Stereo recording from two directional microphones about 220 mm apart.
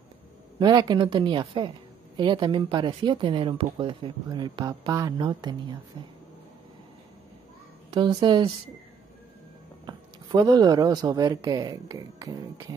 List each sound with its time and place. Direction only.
0.6 s speech: 20° right (ahead or behind)
7.9 s speech: 20° right (ahead or behind)
9.8 s speech: 20° right (ahead or behind)